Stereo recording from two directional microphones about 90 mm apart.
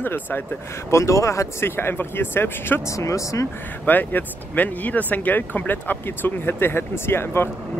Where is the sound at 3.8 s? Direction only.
20° left (ahead or behind).